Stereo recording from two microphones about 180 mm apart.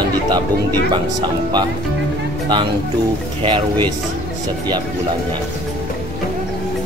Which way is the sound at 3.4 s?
25° right (ahead or behind).